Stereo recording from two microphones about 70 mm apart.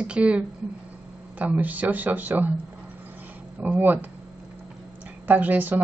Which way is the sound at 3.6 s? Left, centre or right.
Right.